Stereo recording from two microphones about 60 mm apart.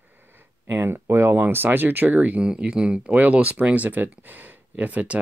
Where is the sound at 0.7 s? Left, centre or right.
Right.